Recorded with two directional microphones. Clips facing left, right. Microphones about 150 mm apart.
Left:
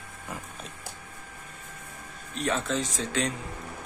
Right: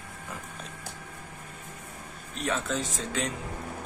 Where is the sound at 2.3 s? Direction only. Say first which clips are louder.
Left 2 dB; centre (ahead or behind).